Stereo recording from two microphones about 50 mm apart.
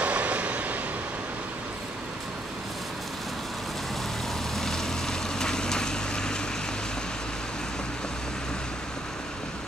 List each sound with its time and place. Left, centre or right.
0.0 s vehicle: right
4.6 s vehicle: centre